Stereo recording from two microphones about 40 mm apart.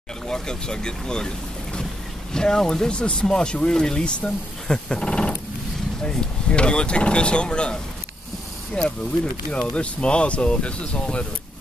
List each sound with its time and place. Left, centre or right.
0.3 s speech: left